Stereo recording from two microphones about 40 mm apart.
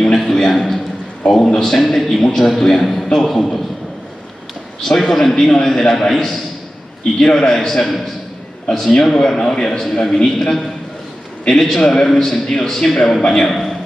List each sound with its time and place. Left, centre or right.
0.4 s a sound: centre
1.3 s a man's voice: centre
4.9 s a man's voice: centre
13.2 s a man's voice: centre
13.5 s a man's voice: centre